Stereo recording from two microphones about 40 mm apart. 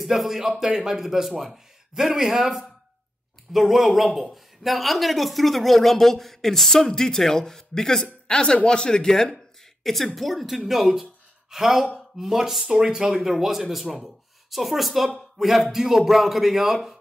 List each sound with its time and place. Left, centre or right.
0.0 s a man's voice: centre
9.8 s a man's voice: centre
12.9 s speech: right
13.2 s a man's voice: centre